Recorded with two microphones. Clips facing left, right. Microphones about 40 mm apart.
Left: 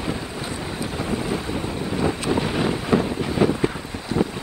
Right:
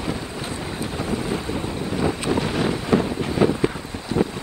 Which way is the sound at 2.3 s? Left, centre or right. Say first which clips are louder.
Even; centre.